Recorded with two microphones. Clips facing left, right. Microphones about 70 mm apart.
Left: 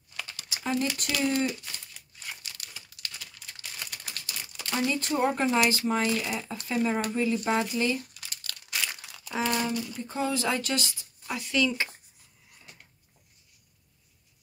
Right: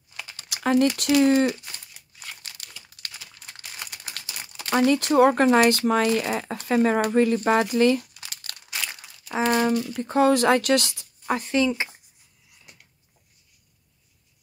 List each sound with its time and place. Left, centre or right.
0.1 s a sound: centre
0.5 s a sound: right
0.9 s speech: right
2.4 s crumpling: right
4.2 s crumpling: right
4.7 s speech: right
8.6 s crumpling: centre
9.7 s speech: right
11.3 s speech: right